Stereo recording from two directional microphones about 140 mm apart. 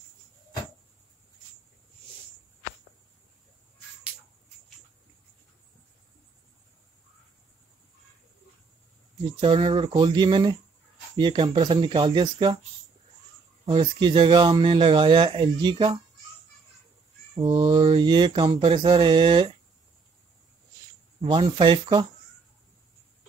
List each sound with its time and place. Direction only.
9.4 s speech: 40° right (ahead or behind)
13.7 s speech: 35° right (ahead or behind)
17.4 s speech: 35° right (ahead or behind)
21.2 s speech: 40° right (ahead or behind)